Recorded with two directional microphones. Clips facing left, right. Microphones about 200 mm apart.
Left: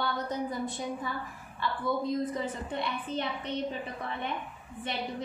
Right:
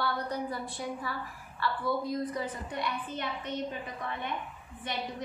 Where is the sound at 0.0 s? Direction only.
20° left (ahead or behind).